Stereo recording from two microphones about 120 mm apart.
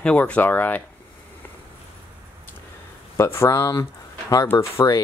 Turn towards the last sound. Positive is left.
turn(degrees=30)  # may be behind; listen again after turning